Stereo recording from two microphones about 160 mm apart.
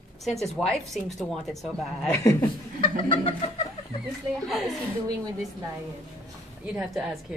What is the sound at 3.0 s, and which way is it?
Chicken, 35° left (ahead or behind).